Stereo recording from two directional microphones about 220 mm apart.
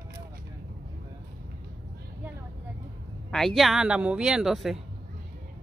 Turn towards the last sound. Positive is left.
turn(degrees=0)  # may be behind; listen again after turning